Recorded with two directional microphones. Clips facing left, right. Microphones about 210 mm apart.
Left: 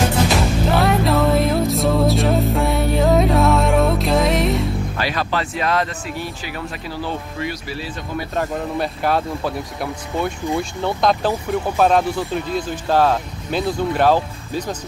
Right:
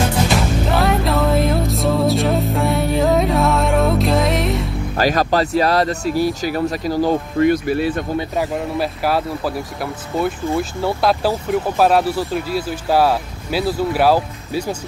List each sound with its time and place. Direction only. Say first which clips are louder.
0.7 s music: left 2 dB; centre (ahead or behind)
4.9 s speech: right 11 dB; 40° right (ahead or behind)
8.4 s speech: left 1 dB; 5° right (ahead or behind)